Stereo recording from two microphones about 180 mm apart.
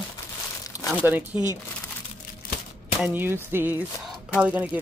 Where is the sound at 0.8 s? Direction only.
20° left (ahead or behind).